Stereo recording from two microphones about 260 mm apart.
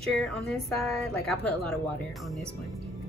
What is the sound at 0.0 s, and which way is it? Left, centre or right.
A woman's voice, centre.